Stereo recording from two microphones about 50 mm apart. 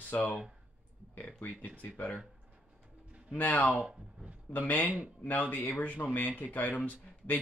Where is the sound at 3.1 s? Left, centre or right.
Right.